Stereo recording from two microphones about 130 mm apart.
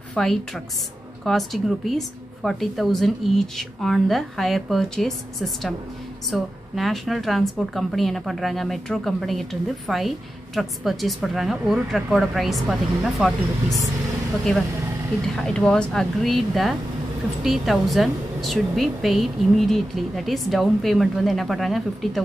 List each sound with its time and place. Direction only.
0.1 s a woman's voice: 5° left (ahead or behind)